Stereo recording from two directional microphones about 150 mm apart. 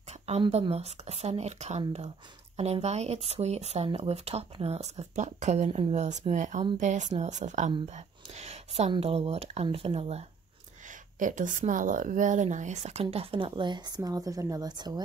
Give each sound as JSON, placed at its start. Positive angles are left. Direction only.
{"t": 0.4, "sound": "speech", "side_deg": -40}
{"t": 11.1, "sound": "speech", "side_deg": -60}